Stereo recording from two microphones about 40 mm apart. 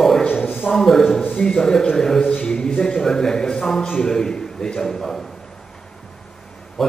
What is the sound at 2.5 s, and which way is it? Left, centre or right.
A man's voice, centre.